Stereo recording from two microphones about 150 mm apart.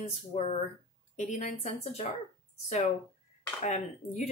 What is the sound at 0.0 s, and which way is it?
Speech, 45° left (ahead or behind).